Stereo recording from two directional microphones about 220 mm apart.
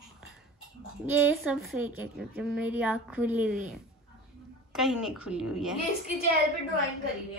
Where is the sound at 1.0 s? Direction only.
5° right (ahead or behind).